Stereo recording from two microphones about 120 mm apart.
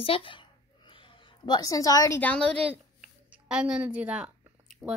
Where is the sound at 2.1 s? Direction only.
10° left (ahead or behind).